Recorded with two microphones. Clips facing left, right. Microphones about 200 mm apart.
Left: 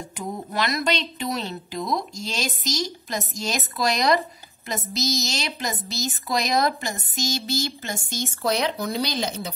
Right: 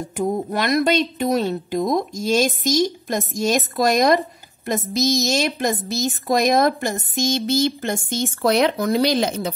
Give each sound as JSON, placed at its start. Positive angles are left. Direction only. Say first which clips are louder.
{"t": 0.2, "sound": "a woman's voice", "louder": "right 6 dB", "side_deg": -55}